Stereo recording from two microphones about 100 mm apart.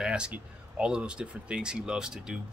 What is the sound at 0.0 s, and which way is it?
Speech, 10° right (ahead or behind).